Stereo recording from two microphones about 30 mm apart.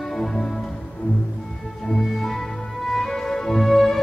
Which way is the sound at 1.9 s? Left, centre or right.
Centre.